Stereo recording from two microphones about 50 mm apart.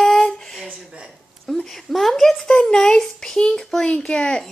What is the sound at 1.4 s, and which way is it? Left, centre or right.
Speech, centre.